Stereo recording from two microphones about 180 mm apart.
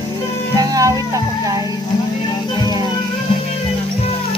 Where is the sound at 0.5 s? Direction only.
20° right (ahead or behind).